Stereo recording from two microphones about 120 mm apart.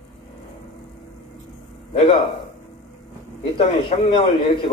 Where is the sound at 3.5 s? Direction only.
50° left (ahead or behind).